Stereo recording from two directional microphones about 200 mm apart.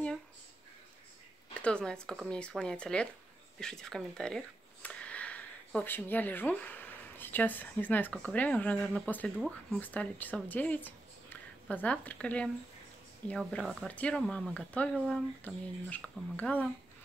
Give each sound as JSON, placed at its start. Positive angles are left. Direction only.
{"t": 1.5, "sound": "speech", "side_deg": 5}